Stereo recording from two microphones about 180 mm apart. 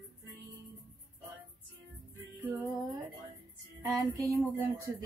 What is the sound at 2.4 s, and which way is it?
Music, 5° right (ahead or behind).